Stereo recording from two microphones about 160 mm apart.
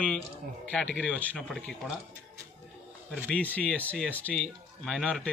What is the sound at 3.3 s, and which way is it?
Speech, 10° left (ahead or behind).